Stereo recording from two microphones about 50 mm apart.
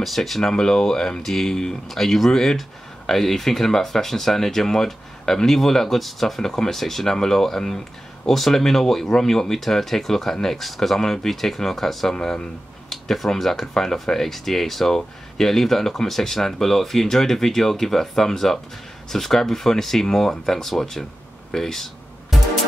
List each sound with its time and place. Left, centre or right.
0.0 s speech: centre
0.4 s speech: centre
12.2 s speech: centre
12.9 s speech: centre